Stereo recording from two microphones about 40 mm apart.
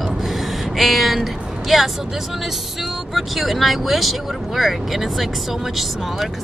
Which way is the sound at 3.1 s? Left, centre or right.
Centre.